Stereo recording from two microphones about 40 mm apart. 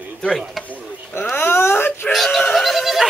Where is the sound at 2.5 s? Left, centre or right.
Centre.